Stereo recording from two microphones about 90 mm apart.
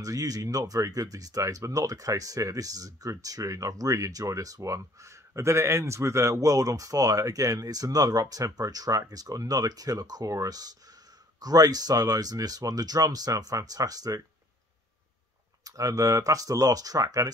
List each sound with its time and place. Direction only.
0.0 s speech: 40° right (ahead or behind)
15.6 s speech: 40° right (ahead or behind)